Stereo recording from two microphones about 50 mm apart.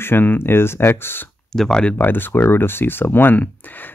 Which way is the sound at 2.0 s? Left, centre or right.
Left.